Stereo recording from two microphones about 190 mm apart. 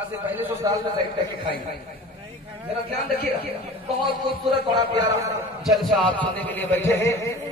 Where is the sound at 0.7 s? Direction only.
20° right (ahead or behind).